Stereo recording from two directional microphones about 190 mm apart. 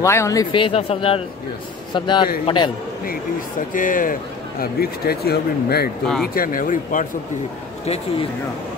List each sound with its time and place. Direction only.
0.0 s a man's voice: 15° left (ahead or behind)
3.7 s speech: 45° left (ahead or behind)
7.8 s speech: 35° left (ahead or behind)